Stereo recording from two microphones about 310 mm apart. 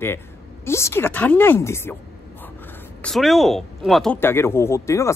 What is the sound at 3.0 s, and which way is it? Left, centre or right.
Speech, centre.